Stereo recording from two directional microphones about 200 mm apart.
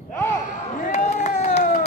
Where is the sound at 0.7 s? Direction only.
40° left (ahead or behind).